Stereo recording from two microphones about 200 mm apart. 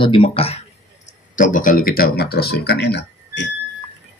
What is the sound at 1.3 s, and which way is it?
Speech, 40° left (ahead or behind).